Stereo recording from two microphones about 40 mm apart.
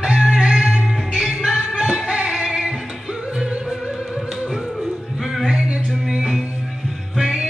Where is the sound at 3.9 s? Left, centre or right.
Centre.